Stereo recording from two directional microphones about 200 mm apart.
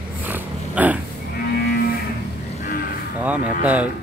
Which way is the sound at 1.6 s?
50° left (ahead or behind).